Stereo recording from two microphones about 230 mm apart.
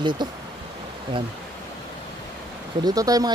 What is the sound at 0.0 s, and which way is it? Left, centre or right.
Speech, centre.